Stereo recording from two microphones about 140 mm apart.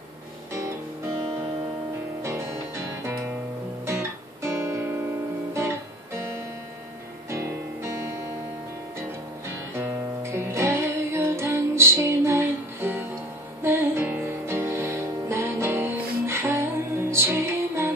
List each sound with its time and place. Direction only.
2.2 s music: 20° right (ahead or behind)
3.8 s guitar: 20° right (ahead or behind)
7.2 s music: 20° right (ahead or behind)
9.8 s music: 20° right (ahead or behind)